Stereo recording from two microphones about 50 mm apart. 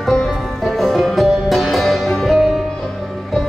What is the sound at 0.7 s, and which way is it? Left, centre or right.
Music, centre.